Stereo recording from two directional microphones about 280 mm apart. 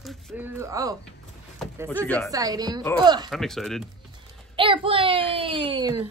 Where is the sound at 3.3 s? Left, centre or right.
Centre.